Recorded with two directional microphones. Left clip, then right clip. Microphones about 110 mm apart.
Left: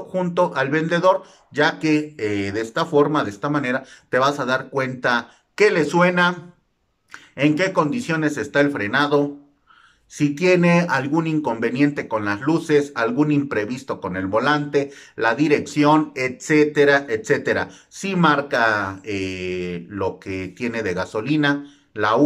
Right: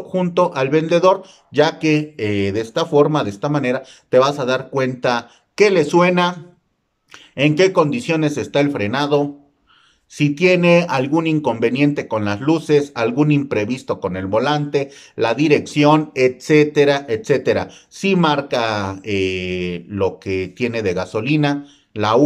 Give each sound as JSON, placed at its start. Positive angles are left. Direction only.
{"t": 0.1, "sound": "speech", "side_deg": -20}